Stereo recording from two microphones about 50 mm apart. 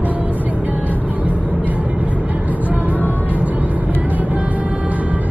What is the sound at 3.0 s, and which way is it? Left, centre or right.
Vehicle, left.